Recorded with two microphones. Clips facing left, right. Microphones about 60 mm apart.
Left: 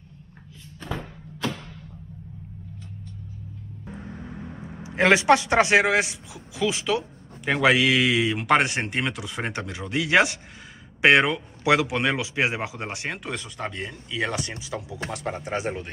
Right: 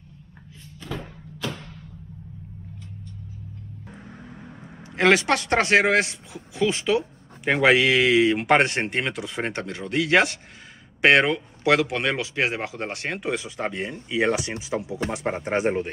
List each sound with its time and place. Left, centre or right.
4.9 s speech: centre
13.2 s speech: centre; by 15.1 s right
15.2 s speech: right